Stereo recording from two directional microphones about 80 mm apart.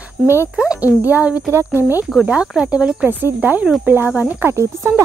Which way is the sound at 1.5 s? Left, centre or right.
Right.